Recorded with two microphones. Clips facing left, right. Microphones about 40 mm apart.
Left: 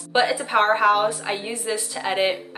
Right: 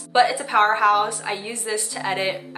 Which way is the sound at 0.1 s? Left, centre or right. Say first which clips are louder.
Right 2 dB; centre.